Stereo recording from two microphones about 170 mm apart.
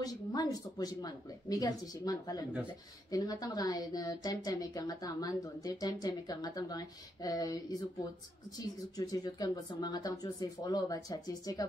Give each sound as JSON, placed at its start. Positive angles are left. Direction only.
{"t": 0.0, "sound": "speech", "side_deg": 20}
{"t": 8.5, "sound": "speech", "side_deg": 20}